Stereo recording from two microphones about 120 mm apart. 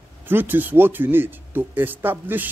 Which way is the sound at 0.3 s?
15° right (ahead or behind).